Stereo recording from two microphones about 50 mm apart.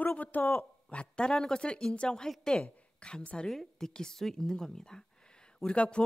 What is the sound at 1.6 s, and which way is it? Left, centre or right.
A woman's voice, centre.